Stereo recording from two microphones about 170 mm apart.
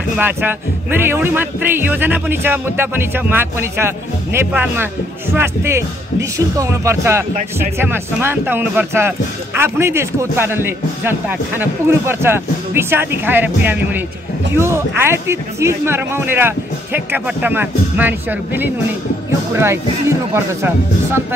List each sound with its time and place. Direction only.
0.2 s speech: 10° right (ahead or behind)
14.5 s speech: 15° right (ahead or behind)